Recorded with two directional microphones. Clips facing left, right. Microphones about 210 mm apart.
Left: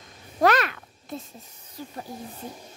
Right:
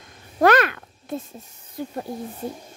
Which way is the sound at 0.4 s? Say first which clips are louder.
Right 4 dB; 55° right (ahead or behind).